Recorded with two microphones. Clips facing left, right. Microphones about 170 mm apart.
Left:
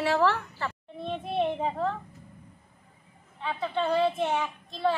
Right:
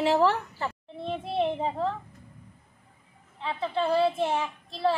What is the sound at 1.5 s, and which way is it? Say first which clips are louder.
Speech: even; 30° right (ahead or behind).